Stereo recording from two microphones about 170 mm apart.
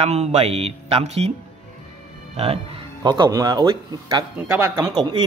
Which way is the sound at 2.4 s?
35° right (ahead or behind).